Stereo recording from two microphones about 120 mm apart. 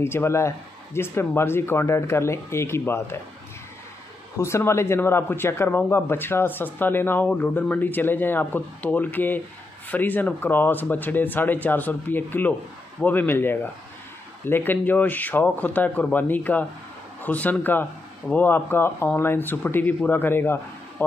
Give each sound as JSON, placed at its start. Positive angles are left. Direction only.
{"t": 0.0, "sound": "speech", "side_deg": 20}
{"t": 4.4, "sound": "speech", "side_deg": 25}